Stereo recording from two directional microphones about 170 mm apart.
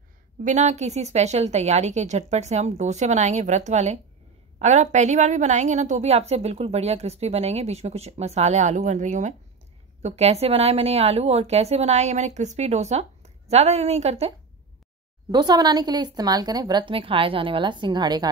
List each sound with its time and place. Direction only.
0.4 s a woman's voice: 45° right (ahead or behind)
15.3 s speech: 25° right (ahead or behind)